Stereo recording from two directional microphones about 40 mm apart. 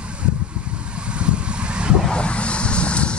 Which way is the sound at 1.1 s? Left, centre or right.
Right.